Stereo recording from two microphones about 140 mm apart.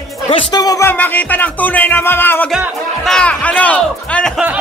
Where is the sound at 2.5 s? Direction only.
Centre (ahead or behind).